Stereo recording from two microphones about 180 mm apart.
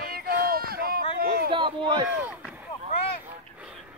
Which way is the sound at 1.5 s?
25° right (ahead or behind).